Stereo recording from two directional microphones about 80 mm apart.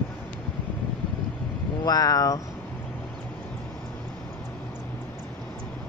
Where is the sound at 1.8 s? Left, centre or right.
Left.